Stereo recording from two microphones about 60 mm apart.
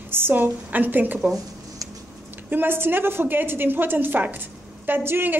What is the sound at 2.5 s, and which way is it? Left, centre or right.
A woman's voice, right.